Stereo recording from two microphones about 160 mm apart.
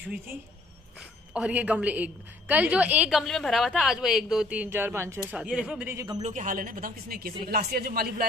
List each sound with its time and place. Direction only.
1.3 s a woman's voice: 10° right (ahead or behind)
6.2 s a man's voice: 55° right (ahead or behind)